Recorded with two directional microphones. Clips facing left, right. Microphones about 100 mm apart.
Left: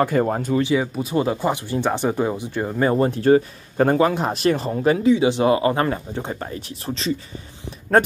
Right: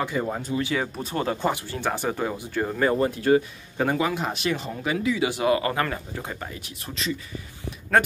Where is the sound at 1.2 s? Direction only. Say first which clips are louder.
Left 4 dB; 15° left (ahead or behind).